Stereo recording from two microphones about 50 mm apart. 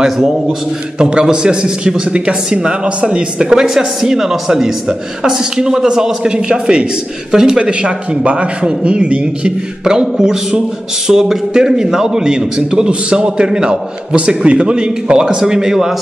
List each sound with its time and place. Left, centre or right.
0.0 s a man's voice: centre